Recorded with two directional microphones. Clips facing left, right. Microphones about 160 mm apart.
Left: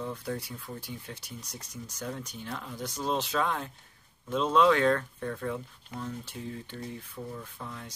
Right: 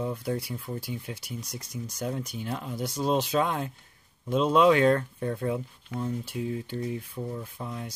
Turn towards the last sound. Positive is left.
turn(degrees=-20)  # may be behind; listen again after turning